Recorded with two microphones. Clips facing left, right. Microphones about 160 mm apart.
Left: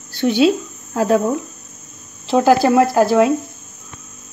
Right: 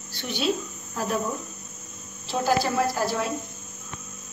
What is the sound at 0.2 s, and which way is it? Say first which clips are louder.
Speech: left 12 dB; 90° left.